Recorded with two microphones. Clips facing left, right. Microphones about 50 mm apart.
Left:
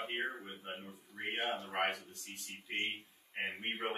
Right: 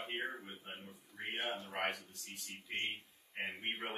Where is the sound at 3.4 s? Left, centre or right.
Centre.